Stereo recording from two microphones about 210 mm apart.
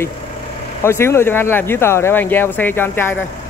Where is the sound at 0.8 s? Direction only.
10° left (ahead or behind).